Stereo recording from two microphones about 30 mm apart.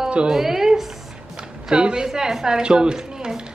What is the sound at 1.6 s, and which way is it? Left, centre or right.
Speech, right.